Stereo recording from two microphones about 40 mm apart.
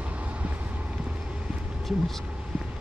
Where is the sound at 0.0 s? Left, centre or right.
Right.